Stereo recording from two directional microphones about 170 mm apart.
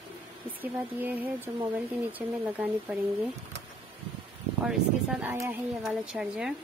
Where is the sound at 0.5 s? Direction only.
10° right (ahead or behind).